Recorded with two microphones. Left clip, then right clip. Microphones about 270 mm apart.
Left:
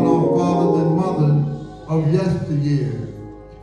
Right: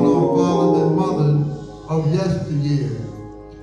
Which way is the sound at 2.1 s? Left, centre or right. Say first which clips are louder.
Left 1 dB; right.